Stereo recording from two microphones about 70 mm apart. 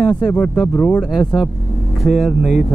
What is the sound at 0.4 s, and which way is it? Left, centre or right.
Speech, left.